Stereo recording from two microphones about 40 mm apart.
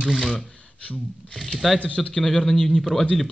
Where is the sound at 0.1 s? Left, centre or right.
Centre.